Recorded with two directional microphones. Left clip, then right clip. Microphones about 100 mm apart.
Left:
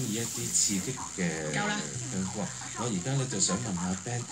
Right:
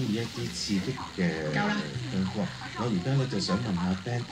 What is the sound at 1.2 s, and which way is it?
Speech, 30° left (ahead or behind).